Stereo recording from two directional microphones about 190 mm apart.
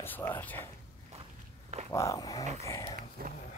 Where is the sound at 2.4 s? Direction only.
35° right (ahead or behind).